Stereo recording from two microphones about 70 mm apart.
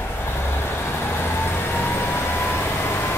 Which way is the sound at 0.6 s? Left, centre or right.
Left.